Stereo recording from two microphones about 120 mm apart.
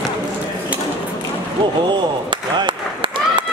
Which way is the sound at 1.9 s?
40° right (ahead or behind).